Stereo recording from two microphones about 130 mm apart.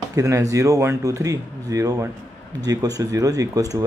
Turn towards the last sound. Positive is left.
turn(degrees=-25)  # may be behind; listen again after turning